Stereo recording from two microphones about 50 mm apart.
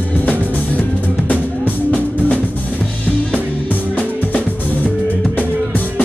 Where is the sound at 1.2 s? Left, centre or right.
Left.